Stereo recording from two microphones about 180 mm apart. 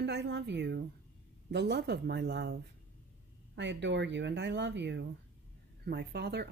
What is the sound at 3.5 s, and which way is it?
Speech, 80° right.